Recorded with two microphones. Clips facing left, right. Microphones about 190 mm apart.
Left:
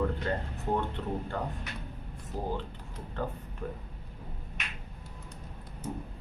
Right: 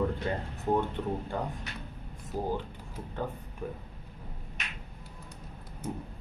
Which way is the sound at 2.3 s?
10° right (ahead or behind).